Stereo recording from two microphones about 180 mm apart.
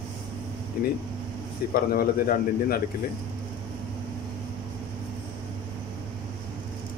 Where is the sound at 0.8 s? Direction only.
55° left (ahead or behind).